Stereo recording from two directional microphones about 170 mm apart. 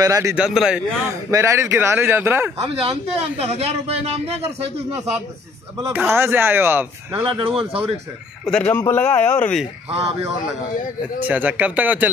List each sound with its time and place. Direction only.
0.0 s a man's voice: 20° right (ahead or behind)
0.4 s a man's voice: 5° right (ahead or behind)
1.3 s speech: 15° right (ahead or behind)
2.8 s speech: 35° right (ahead or behind)
5.8 s speech: 15° right (ahead or behind)
7.2 s speech: 30° right (ahead or behind)
8.5 s speech: 5° left (ahead or behind)
9.8 s speech: 35° right (ahead or behind)
11.2 s speech: 10° right (ahead or behind)